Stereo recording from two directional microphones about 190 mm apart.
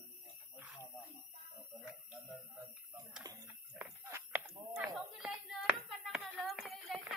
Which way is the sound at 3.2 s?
20° right (ahead or behind).